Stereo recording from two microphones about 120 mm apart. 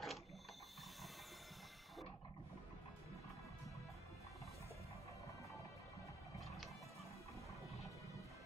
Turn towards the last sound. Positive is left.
turn(degrees=0)  # may be behind; listen again after turning